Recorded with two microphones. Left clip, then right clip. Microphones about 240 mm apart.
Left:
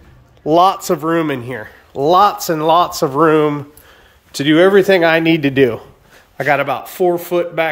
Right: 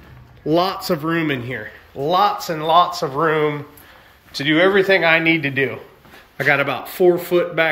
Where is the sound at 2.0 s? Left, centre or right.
Left.